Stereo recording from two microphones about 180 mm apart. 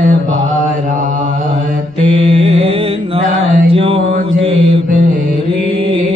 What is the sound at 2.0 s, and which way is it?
Mantra, 30° right (ahead or behind).